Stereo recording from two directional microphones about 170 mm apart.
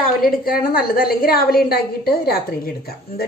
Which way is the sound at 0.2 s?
60° left (ahead or behind).